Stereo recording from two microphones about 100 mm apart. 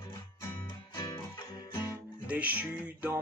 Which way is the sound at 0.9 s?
50° left (ahead or behind).